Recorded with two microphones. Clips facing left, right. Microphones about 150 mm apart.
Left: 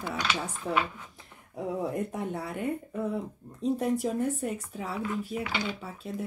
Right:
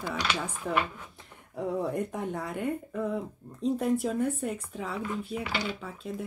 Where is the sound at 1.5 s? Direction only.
5° left (ahead or behind).